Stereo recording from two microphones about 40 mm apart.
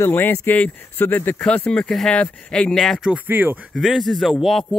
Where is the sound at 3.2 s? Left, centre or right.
Right.